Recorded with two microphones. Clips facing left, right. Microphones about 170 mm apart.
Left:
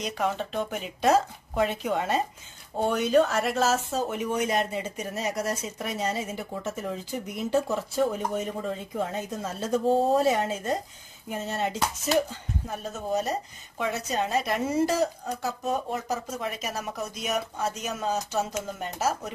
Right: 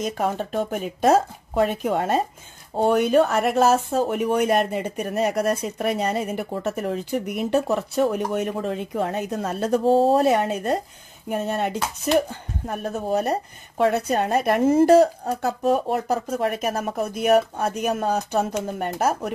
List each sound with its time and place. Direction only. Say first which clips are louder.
0.0 s a woman's voice: right 4 dB; 50° right (ahead or behind)